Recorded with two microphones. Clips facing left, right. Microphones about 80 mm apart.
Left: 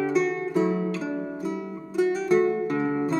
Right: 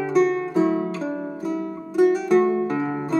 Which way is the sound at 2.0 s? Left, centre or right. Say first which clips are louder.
Right 4 dB; right.